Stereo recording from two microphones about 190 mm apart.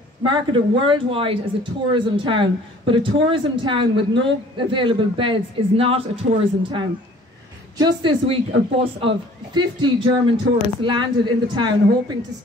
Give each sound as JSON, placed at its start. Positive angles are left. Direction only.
{"t": 0.2, "sound": "speech", "side_deg": -25}